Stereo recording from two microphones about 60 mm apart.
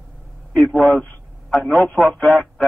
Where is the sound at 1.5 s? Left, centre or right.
Centre.